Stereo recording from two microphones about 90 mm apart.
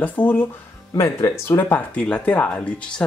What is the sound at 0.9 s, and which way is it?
Speech, 35° left (ahead or behind).